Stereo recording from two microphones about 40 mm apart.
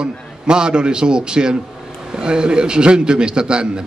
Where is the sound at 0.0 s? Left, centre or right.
Right.